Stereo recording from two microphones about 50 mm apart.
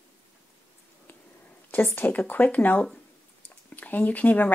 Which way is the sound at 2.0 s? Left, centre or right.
Left.